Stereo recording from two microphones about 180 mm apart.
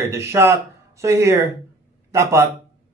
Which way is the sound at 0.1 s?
15° right (ahead or behind).